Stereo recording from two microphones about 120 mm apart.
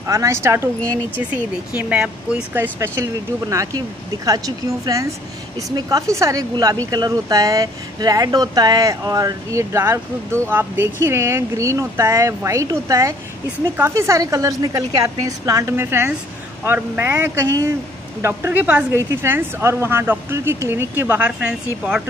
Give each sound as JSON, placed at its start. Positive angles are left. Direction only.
{"t": 0.0, "sound": "speech", "side_deg": -25}
{"t": 1.8, "sound": "speech", "side_deg": -10}